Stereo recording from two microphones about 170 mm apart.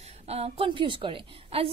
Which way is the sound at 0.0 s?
35° right (ahead or behind).